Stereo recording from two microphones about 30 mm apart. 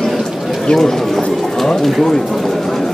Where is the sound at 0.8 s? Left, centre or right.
Centre.